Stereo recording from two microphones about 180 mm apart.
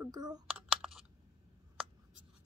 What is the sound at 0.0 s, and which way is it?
Speech, 20° right (ahead or behind).